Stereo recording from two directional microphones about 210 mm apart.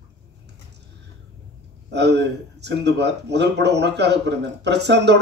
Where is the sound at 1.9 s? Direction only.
55° right (ahead or behind).